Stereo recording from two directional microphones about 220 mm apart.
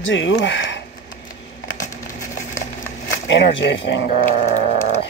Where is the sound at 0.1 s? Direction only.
60° left (ahead or behind).